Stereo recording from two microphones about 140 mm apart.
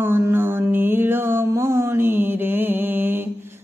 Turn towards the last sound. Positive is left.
turn(degrees=-15)  # may be behind; listen again after turning